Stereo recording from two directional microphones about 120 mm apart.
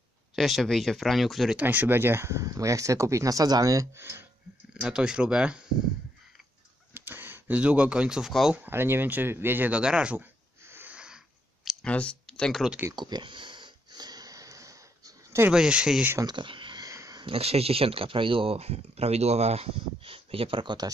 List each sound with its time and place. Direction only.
0.4 s speech: centre (ahead or behind)
1.6 s speech: 15° right (ahead or behind)
4.8 s speech: 5° right (ahead or behind)
6.9 s speech: 15° right (ahead or behind)
8.5 s speech: 20° right (ahead or behind)
10.7 s a sound: 15° right (ahead or behind)
11.8 s speech: 10° left (ahead or behind)
12.9 s a sound: 40° right (ahead or behind)
15.5 s speech: 5° right (ahead or behind)
16.3 s a sound: 40° right (ahead or behind)
17.3 s speech: 55° right (ahead or behind)